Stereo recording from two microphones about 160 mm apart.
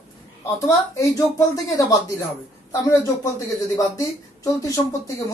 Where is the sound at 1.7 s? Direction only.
20° left (ahead or behind).